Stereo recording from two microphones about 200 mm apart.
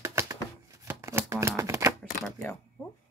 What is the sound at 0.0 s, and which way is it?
Shuffling cards, 15° right (ahead or behind).